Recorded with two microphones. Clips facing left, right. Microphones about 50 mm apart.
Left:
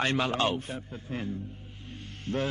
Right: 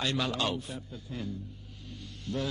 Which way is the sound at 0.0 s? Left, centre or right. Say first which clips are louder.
Left 4 dB; left.